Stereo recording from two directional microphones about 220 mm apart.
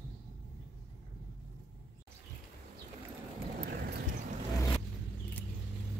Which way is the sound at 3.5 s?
45° right (ahead or behind).